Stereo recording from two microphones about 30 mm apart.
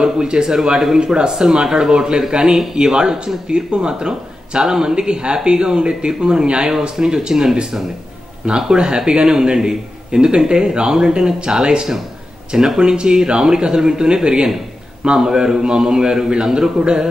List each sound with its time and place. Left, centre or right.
0.0 s a man's voice: right
2.7 s a man's voice: right
4.6 s speech: centre
4.9 s a man's voice: right